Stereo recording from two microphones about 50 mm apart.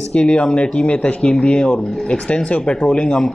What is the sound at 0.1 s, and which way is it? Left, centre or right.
A man's voice, left.